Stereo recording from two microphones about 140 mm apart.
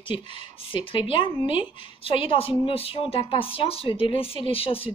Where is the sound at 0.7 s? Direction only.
40° left (ahead or behind).